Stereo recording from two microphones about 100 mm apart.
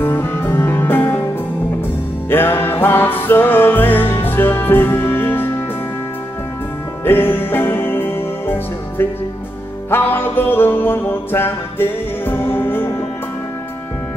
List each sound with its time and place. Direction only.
0.0 s music: 25° left (ahead or behind)
2.2 s music: 20° left (ahead or behind)
7.1 s music: 20° left (ahead or behind)